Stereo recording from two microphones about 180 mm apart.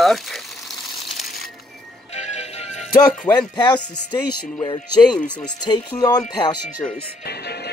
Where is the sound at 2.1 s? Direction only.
40° left (ahead or behind).